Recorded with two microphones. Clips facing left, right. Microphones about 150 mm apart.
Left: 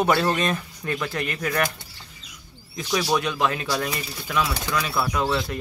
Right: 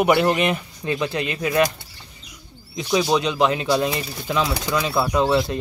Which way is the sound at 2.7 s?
20° right (ahead or behind).